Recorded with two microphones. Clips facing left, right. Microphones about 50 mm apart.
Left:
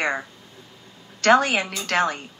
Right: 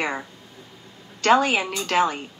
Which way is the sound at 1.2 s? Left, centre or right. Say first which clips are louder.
Left 1 dB; left.